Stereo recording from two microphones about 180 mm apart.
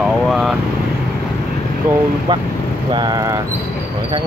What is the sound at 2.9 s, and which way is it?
Speech, 20° right (ahead or behind).